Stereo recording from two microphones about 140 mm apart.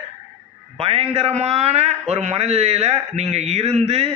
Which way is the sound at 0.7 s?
45° right (ahead or behind).